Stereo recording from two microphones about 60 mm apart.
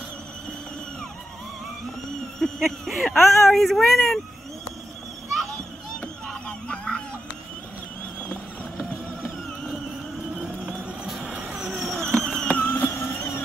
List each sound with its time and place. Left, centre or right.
2.3 s speech: centre
6.4 s honk: centre
11.1 s vehicle: centre
11.8 s vehicle: centre
12.5 s vehicle: left